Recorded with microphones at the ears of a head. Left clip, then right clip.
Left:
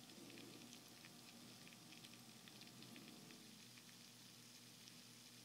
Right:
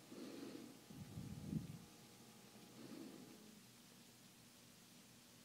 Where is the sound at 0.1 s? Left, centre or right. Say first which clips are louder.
Right 7 dB; right.